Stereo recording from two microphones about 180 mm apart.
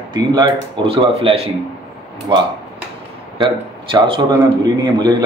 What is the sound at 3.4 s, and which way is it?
A man's voice, 25° right (ahead or behind).